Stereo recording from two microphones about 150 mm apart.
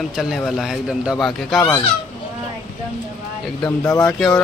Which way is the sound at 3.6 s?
20° left (ahead or behind).